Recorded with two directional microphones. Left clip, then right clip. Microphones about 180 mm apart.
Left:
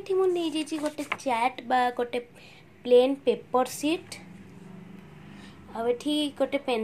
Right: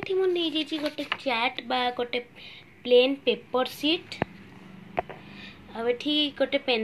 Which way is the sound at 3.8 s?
45° left (ahead or behind).